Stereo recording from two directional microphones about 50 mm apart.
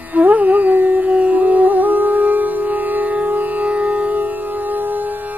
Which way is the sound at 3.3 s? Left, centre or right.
Right.